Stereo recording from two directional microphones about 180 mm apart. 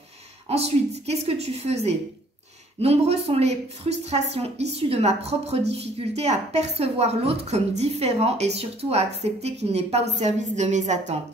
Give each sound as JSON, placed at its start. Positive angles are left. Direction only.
{"t": 0.5, "sound": "speech", "side_deg": -35}